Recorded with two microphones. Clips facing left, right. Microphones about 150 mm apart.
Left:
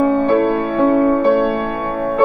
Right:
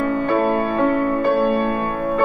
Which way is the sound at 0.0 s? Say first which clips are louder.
Left 6 dB; 35° left (ahead or behind).